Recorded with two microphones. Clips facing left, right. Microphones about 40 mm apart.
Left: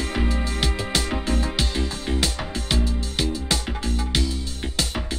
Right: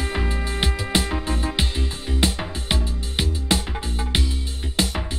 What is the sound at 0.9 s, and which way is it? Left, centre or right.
Music, right.